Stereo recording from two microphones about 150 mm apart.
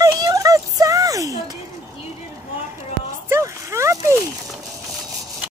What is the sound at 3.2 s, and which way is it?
Speech, 20° right (ahead or behind).